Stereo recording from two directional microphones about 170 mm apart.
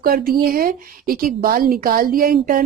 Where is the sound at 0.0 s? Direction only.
60° right (ahead or behind).